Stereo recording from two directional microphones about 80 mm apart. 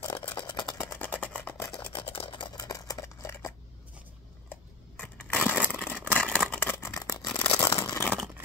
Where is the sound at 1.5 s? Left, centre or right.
Left.